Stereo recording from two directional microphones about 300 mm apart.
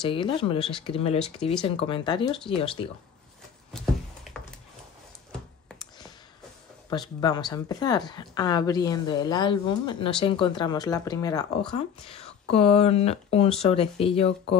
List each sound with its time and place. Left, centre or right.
0.0 s speech: centre
3.7 s a sound: centre
6.9 s speech: centre